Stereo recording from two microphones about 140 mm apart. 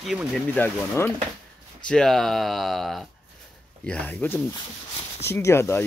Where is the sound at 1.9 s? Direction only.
5° left (ahead or behind).